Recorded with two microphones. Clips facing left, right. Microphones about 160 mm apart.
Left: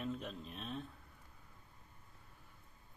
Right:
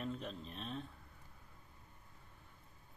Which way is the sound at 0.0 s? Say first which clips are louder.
Left 1 dB; centre (ahead or behind).